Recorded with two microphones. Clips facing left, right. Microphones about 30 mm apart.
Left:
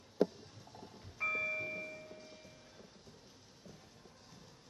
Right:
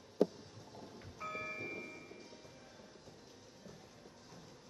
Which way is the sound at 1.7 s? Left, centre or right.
Centre.